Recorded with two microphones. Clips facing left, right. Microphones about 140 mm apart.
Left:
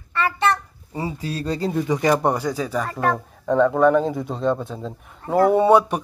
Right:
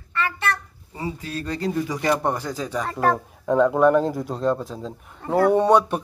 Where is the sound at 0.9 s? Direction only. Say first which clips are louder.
Left 3 dB; 30° left (ahead or behind); by 2.9 s 5° left (ahead or behind).